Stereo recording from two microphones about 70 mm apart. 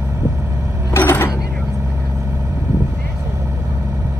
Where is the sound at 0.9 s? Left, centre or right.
Left.